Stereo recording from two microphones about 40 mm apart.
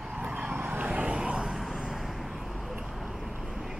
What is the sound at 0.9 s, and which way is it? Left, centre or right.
Vehicle, right.